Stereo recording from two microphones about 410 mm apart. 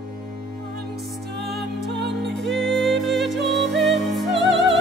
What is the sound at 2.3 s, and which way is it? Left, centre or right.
Music, centre.